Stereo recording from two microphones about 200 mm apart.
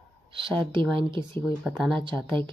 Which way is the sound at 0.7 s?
25° right (ahead or behind).